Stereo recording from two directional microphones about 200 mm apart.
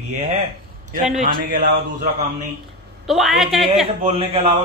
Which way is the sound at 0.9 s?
40° right (ahead or behind).